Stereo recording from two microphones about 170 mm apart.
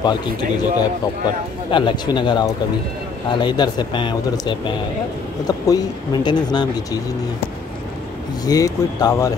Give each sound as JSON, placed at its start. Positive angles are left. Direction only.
{"t": 0.0, "sound": "a man's voice", "side_deg": 25}
{"t": 8.5, "sound": "a man's voice", "side_deg": 20}